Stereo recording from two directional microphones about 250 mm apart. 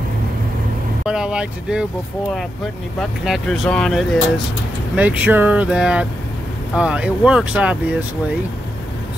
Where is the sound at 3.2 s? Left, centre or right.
Centre.